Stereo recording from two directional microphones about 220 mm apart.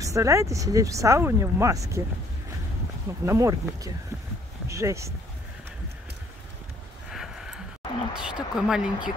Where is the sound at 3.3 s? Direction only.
15° right (ahead or behind).